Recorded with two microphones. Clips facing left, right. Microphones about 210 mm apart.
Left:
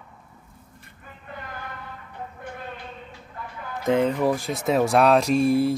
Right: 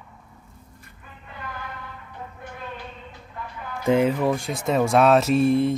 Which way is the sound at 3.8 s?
10° right (ahead or behind).